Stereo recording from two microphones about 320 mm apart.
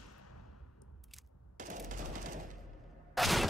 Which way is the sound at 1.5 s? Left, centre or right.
Right.